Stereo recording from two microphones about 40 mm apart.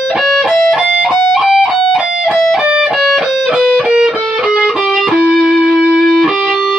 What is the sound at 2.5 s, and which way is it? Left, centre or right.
Music, right.